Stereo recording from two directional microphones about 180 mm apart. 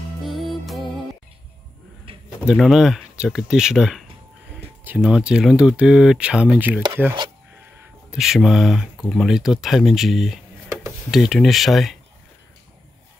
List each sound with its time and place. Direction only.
0.2 s music: centre (ahead or behind)
2.1 s a sound: 30° right (ahead or behind)
2.4 s speech: centre (ahead or behind)
6.8 s chopping: 10° right (ahead or behind)
8.1 s speech: centre (ahead or behind)